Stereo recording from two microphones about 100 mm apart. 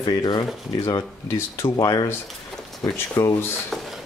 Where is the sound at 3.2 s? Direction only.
30° left (ahead or behind).